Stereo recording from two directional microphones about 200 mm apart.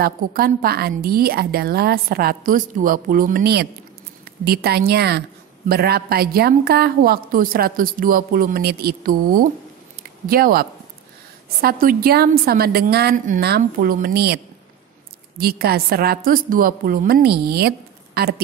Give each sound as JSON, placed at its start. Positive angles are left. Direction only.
{"t": 0.0, "sound": "a woman's voice", "side_deg": -50}